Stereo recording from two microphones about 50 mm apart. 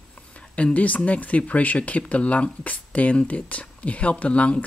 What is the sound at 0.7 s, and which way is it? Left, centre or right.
Speech, left.